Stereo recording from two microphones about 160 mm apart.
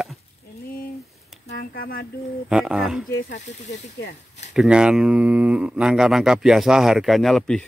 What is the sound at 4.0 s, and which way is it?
Speech, 90° left.